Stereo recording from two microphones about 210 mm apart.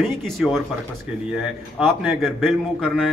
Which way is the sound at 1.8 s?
Centre (ahead or behind).